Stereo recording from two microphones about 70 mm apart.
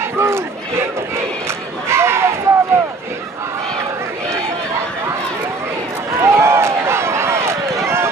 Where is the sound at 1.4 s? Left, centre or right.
Right.